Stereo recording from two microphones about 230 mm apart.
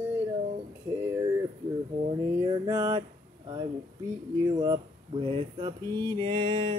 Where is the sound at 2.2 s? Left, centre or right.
Centre.